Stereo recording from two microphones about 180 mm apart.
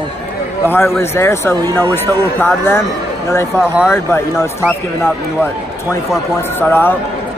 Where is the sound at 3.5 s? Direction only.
15° left (ahead or behind).